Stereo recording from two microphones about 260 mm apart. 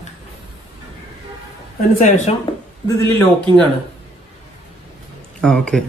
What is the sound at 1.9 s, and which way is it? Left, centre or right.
Speech, left.